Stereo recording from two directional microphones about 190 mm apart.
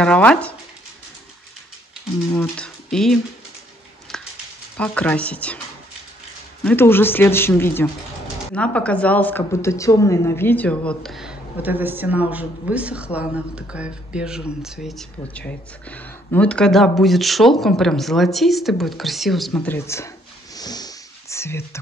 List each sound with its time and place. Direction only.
0.0 s speech: 5° left (ahead or behind)
2.3 s speech: 5° left (ahead or behind)
4.1 s dog: 5° left (ahead or behind)
4.7 s speech: 5° left (ahead or behind)
6.6 s a woman's voice: 10° left (ahead or behind)
20.5 s sniff: 20° left (ahead or behind)